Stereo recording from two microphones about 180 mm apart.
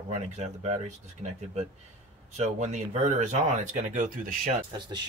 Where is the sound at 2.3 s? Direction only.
40° right (ahead or behind).